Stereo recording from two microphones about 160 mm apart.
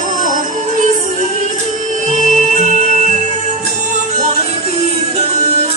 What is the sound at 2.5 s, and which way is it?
Music, 50° right (ahead or behind).